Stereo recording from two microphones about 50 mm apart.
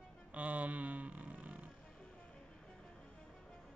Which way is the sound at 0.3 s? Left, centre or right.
Right.